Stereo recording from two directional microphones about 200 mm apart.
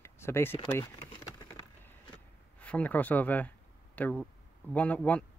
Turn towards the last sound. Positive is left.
turn(degrees=5)  # may be behind; listen again after turning